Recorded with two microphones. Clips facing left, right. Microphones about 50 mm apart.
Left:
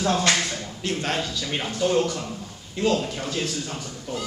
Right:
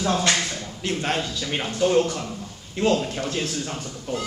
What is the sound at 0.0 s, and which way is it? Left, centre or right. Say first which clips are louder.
Speech: even; centre.